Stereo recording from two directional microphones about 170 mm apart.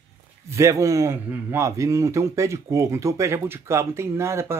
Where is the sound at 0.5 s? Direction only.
15° right (ahead or behind).